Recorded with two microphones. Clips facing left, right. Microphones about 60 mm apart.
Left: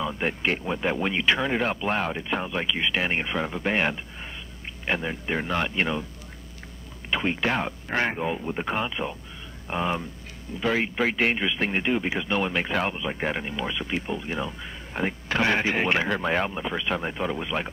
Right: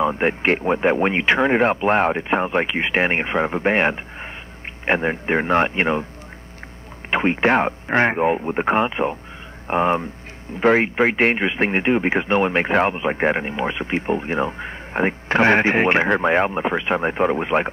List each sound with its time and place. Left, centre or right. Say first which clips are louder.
0.0 s speech: right 8 dB; right
7.1 s speech: right 8 dB; right